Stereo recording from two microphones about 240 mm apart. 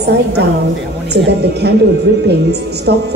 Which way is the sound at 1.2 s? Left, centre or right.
Right.